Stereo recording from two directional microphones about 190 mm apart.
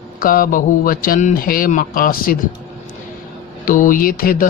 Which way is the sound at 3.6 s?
45° left (ahead or behind).